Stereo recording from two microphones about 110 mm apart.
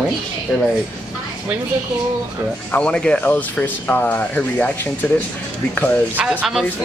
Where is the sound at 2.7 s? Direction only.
10° left (ahead or behind).